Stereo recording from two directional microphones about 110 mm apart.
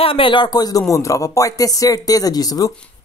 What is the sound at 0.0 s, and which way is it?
Speech, 55° left (ahead or behind).